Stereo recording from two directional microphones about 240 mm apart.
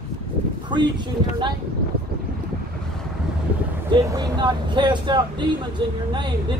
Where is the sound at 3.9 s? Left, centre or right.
Centre.